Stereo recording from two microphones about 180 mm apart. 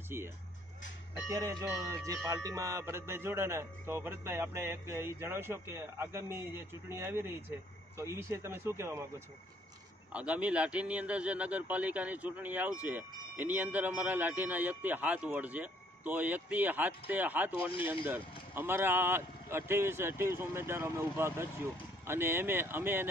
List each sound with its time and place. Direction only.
0.1 s a man's voice: 15° right (ahead or behind)
1.3 s a man's voice: 20° right (ahead or behind)
10.1 s a man's voice: 5° right (ahead or behind)
17.6 s speech: 30° left (ahead or behind)
18.0 s a man's voice: 10° right (ahead or behind)